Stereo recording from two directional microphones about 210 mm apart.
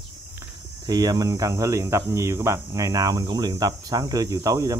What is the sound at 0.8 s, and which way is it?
Speech, 20° right (ahead or behind).